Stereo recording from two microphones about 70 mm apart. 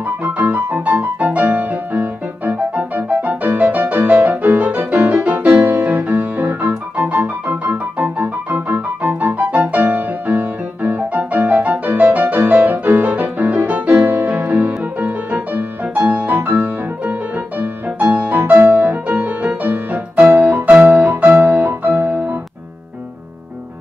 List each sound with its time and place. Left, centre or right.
0.0 s music: right